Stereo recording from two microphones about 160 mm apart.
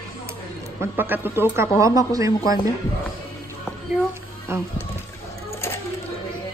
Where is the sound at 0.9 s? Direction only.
15° right (ahead or behind).